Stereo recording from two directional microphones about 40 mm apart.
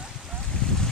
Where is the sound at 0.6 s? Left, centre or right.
Left.